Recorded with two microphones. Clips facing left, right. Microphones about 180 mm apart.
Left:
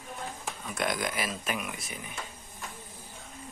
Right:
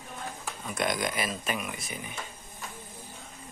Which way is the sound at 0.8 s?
5° left (ahead or behind).